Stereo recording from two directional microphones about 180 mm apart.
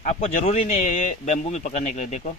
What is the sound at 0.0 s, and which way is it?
A man's voice, 40° left (ahead or behind).